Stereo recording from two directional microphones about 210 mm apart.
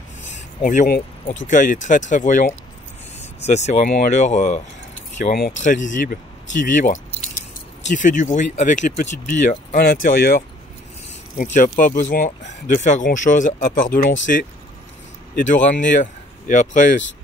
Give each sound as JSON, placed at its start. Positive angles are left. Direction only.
{"t": 0.2, "sound": "a sound", "side_deg": 35}
{"t": 1.5, "sound": "speech", "side_deg": 40}
{"t": 3.4, "sound": "speech", "side_deg": 35}
{"t": 15.3, "sound": "speech", "side_deg": 40}